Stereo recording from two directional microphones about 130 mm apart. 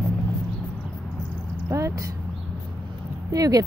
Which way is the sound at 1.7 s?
25° right (ahead or behind).